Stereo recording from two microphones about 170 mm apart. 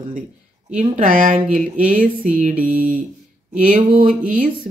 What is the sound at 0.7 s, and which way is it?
Speech, 50° right (ahead or behind).